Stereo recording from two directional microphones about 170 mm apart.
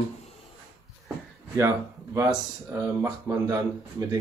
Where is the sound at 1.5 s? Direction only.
15° right (ahead or behind).